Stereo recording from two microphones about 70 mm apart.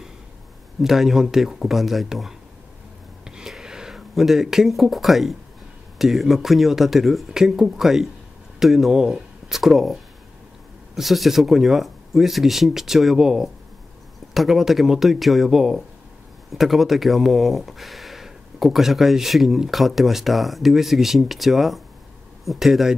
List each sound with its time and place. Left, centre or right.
0.8 s speech: centre
3.3 s a sound: centre
5.9 s speech: centre
11.0 s speech: centre